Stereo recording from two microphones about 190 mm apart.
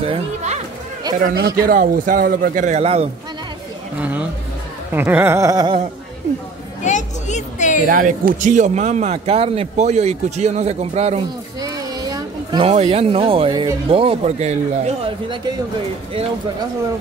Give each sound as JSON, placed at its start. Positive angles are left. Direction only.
{"t": 0.0, "sound": "speech", "side_deg": -35}
{"t": 1.2, "sound": "a man's voice", "side_deg": -55}
{"t": 1.7, "sound": "a man's voice", "side_deg": -45}
{"t": 4.9, "sound": "a sound", "side_deg": -10}
{"t": 6.8, "sound": "a sound", "side_deg": 40}
{"t": 7.9, "sound": "a man's voice", "side_deg": -45}
{"t": 11.6, "sound": "speech", "side_deg": -20}